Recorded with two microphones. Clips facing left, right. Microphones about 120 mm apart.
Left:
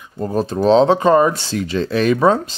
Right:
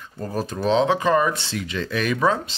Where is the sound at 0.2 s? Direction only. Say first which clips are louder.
Left 7 dB; 30° left (ahead or behind).